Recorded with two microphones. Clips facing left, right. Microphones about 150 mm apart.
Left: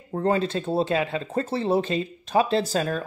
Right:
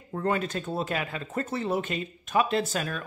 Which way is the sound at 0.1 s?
30° left (ahead or behind).